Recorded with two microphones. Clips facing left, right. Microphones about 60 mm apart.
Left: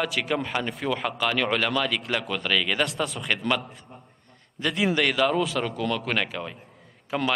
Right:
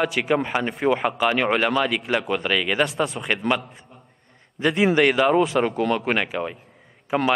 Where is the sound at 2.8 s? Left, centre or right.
Centre.